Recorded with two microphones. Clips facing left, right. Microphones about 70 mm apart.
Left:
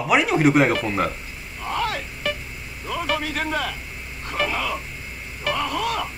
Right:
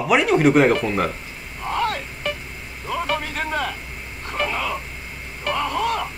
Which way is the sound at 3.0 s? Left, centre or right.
Right.